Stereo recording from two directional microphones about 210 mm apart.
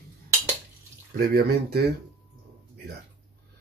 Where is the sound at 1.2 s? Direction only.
45° right (ahead or behind).